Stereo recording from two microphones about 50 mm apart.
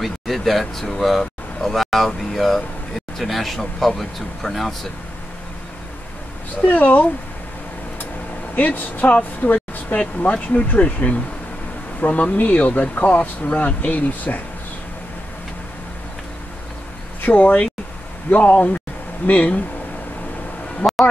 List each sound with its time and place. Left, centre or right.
0.0 s speech: centre
6.7 s speech: left
8.5 s speech: left
17.2 s speech: left
20.8 s a sound: left